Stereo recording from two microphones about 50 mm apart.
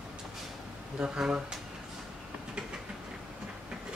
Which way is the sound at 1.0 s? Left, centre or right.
Centre.